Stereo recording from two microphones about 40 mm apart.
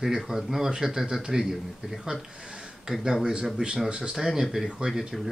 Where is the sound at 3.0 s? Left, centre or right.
Centre.